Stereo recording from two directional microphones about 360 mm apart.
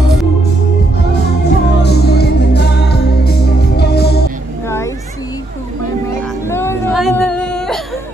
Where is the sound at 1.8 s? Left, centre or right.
Left.